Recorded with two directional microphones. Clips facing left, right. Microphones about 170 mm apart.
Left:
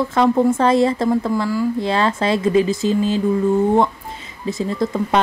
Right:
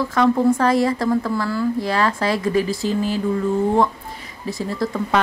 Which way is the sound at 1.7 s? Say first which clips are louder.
Left 2 dB; 25° left (ahead or behind).